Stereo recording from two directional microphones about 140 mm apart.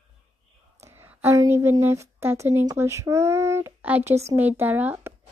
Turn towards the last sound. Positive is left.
turn(degrees=-15)  # may be behind; listen again after turning